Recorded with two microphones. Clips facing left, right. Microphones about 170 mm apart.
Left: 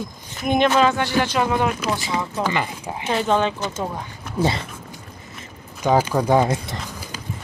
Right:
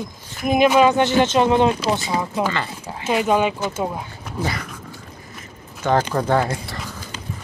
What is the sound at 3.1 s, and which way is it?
Speech, 10° right (ahead or behind).